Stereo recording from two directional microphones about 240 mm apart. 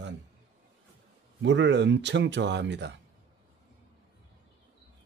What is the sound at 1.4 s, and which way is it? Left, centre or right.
Speech, right.